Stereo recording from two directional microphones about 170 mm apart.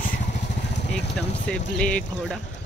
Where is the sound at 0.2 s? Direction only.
45° left (ahead or behind).